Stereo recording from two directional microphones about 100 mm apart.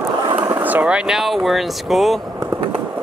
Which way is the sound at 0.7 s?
15° right (ahead or behind).